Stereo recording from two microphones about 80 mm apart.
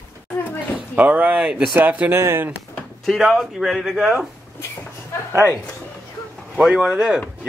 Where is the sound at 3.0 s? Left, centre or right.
Centre.